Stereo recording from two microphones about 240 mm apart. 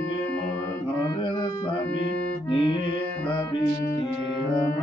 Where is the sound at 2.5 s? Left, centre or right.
Centre.